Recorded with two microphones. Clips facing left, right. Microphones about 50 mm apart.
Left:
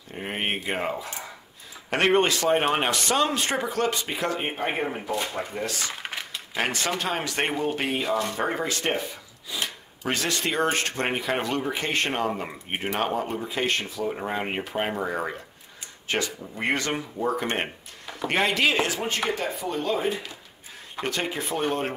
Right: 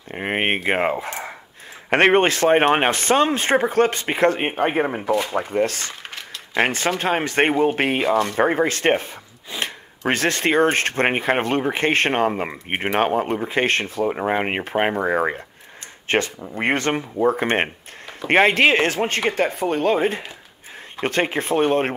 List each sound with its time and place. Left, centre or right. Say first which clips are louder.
0.1 s speech: right 7 dB; right
6.0 s a sound: left 1 dB; centre
6.5 s speech: right 7 dB; right